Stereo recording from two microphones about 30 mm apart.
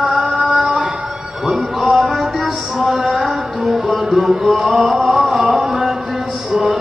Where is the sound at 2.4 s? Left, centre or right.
Centre.